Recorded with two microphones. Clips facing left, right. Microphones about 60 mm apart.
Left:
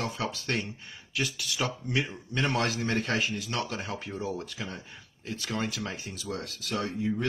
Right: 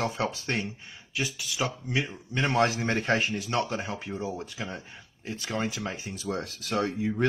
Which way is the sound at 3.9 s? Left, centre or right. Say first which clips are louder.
Right 1 dB; centre.